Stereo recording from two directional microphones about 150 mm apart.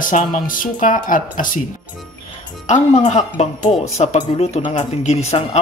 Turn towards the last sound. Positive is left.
turn(degrees=45)  # may be behind; listen again after turning